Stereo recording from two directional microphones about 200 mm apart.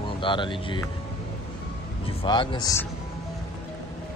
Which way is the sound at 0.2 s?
25° left (ahead or behind).